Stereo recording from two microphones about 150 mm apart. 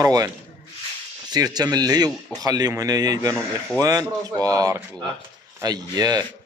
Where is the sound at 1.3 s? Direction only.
25° right (ahead or behind).